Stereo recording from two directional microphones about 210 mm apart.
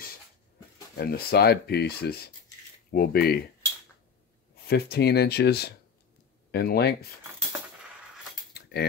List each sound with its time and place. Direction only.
0.9 s speech: 50° left (ahead or behind)
4.6 s speech: 50° left (ahead or behind)